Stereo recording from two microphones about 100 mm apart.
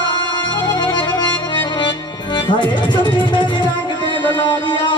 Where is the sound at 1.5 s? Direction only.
55° left (ahead or behind).